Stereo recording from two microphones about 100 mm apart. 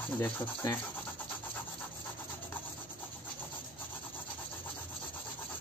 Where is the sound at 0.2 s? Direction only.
20° left (ahead or behind).